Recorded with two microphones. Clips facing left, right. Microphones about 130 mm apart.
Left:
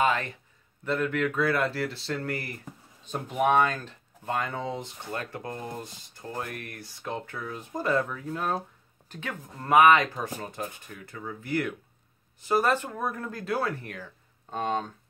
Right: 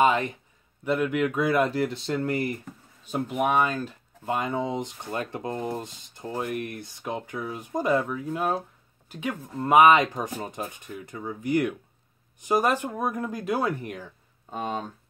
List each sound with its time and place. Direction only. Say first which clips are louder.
0.0 s a man's voice: right 4 dB; 20° right (ahead or behind)
3.1 s speech: even; 10° right (ahead or behind)
14.5 s speech: left 2 dB; 5° right (ahead or behind)